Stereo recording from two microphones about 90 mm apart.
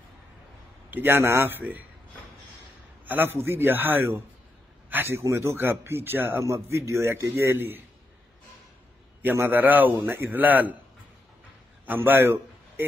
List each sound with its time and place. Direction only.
0.8 s a man's voice: 25° right (ahead or behind)
3.1 s a man's voice: 25° right (ahead or behind)
9.2 s a man's voice: 20° right (ahead or behind)
11.8 s a man's voice: 20° right (ahead or behind)